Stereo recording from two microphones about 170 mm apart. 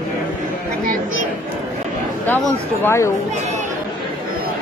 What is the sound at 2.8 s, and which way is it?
Speech, 15° left (ahead or behind).